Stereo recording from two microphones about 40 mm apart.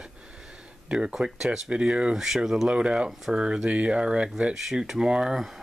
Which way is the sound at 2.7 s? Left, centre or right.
Right.